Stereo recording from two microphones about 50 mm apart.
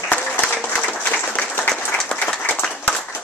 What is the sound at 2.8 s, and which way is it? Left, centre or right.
Clapping, left.